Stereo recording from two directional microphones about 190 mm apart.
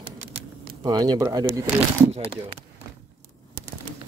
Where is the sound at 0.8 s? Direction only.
20° right (ahead or behind).